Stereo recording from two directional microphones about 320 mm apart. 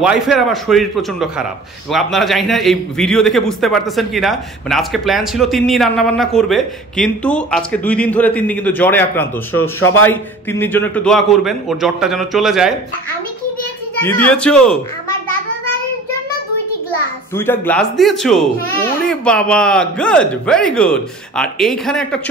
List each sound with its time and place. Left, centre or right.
0.0 s a man's voice: centre
14.0 s a man's voice: centre
17.4 s a man's voice: centre